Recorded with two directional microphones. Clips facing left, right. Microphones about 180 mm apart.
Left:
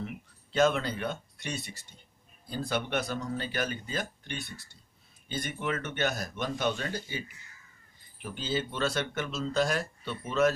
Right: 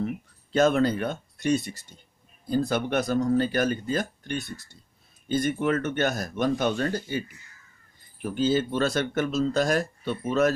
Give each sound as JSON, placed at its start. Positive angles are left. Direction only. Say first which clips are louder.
{"t": 0.0, "sound": "speech", "louder": "right 9 dB", "side_deg": -45}